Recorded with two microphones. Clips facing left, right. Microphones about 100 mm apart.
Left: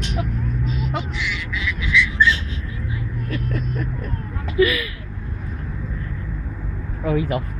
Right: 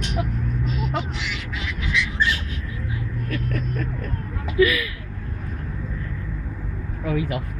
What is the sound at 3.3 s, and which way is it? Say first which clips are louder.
Vehicle: left 1 dB; 20° left (ahead or behind).